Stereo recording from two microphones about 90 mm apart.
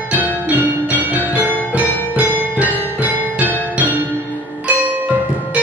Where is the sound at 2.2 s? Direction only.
15° right (ahead or behind).